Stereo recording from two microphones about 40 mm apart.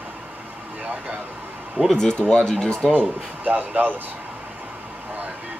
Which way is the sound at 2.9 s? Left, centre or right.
Right.